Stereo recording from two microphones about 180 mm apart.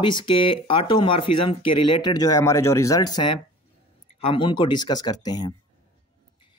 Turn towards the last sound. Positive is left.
turn(degrees=20)  # may be behind; listen again after turning